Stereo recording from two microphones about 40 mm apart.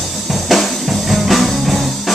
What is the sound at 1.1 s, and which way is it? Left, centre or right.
Music, centre.